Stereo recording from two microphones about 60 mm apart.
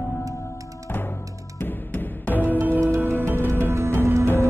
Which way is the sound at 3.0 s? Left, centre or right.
Right.